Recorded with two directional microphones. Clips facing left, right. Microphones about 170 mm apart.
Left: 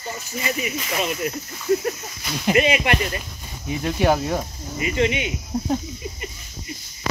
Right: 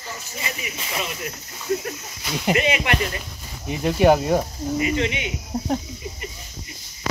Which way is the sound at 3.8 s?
10° right (ahead or behind).